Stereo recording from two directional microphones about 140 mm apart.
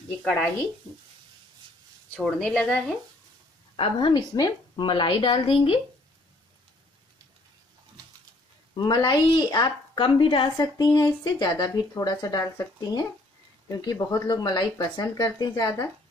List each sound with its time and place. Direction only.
0.2 s speech: 10° left (ahead or behind)
2.2 s a woman's voice: 5° left (ahead or behind)
3.7 s a woman's voice: 35° left (ahead or behind)
8.7 s a woman's voice: 30° left (ahead or behind)
10.6 s speech: 25° left (ahead or behind)